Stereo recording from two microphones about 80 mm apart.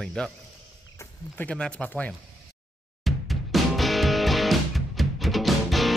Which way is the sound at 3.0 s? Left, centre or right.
Centre.